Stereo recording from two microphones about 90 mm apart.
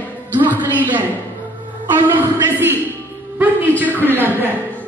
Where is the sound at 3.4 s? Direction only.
20° right (ahead or behind).